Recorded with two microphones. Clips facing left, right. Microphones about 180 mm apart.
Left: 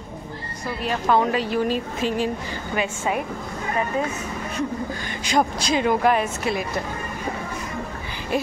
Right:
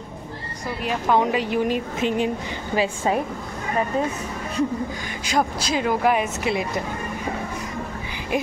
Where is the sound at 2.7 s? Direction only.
30° right (ahead or behind).